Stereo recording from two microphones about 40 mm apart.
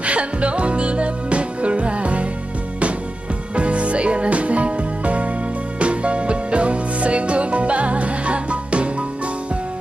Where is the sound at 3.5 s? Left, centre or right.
Right.